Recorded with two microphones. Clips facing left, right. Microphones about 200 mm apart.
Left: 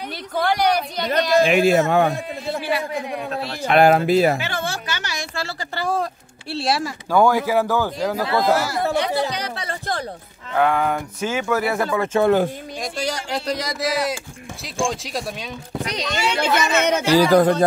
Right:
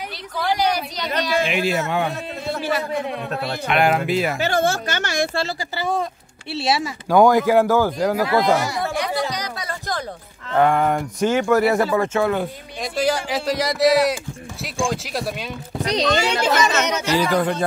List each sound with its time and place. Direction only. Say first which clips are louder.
0.4 s a man's voice: left 2 dB; 55° left (ahead or behind)
3.6 s speech: left 5 dB; 35° left (ahead or behind)
4.4 s a woman's voice: right 7 dB; 45° right (ahead or behind)
5.8 s speech: left 1 dB; centre (ahead or behind)
7.1 s speech: right 3 dB; 15° right (ahead or behind)
8.5 s speech: even; 5° left (ahead or behind)
8.9 s a sound: left 2 dB; 30° left (ahead or behind)
10.6 s speech: right 2 dB; centre (ahead or behind)
12.1 s speech: left 4 dB; 30° left (ahead or behind)
12.8 s speech: right 6 dB; 5° right (ahead or behind)
15.8 s speech: right 6 dB; 35° right (ahead or behind)
16.5 s speech: left 1 dB; 55° left (ahead or behind)
17.1 s speech: left 6 dB; 35° left (ahead or behind)